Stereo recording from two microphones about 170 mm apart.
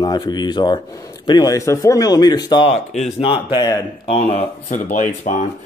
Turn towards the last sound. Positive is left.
turn(degrees=55)  # may be behind; listen again after turning